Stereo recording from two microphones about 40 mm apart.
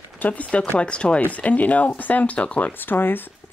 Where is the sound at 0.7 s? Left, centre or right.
Left.